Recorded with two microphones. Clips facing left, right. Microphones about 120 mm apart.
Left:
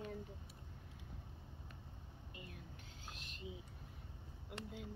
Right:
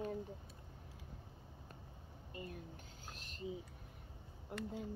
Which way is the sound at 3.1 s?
40° right (ahead or behind).